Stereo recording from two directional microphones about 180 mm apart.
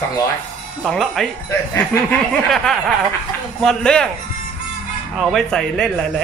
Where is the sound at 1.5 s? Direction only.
15° left (ahead or behind).